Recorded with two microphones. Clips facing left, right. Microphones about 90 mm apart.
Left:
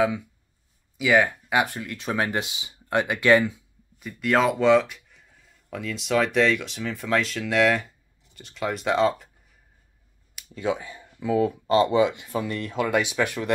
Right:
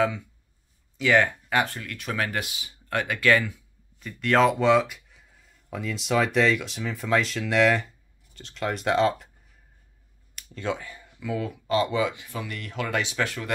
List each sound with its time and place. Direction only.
0.9 s speech: 5° left (ahead or behind)
4.0 s speech: 5° left (ahead or behind)
10.3 s a sound: 10° left (ahead or behind)
11.1 s speech: 35° left (ahead or behind); by 13.5 s 15° left (ahead or behind)